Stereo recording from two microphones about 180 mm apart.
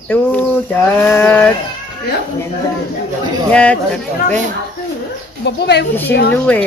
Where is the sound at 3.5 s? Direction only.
5° left (ahead or behind).